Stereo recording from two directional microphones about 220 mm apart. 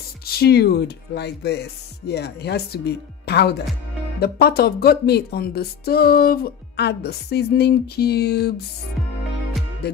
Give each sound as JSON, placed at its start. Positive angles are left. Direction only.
{"t": 0.2, "sound": "speech", "side_deg": 45}